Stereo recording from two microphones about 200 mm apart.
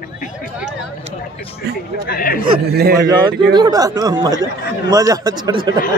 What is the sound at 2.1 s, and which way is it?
Speech, 45° left (ahead or behind).